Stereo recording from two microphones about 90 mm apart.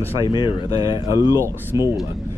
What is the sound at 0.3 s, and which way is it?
Speech, 55° left (ahead or behind).